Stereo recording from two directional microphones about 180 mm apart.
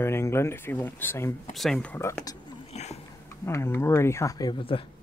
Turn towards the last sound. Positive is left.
turn(degrees=30)  # may be behind; listen again after turning